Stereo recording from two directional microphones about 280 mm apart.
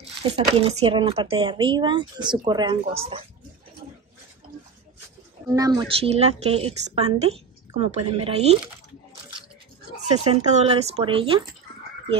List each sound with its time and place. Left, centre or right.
0.0 s speech: centre
5.5 s a woman's voice: centre
10.1 s a woman's voice: right